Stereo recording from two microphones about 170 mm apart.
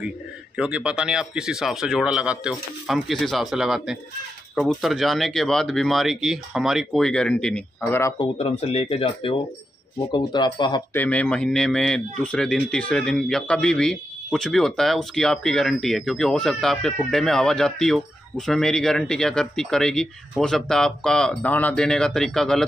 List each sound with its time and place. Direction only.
0.6 s speech: 5° right (ahead or behind); by 8.1 s 10° left (ahead or behind)
8.2 s speech: 35° left (ahead or behind)
10.9 s speech: 10° left (ahead or behind)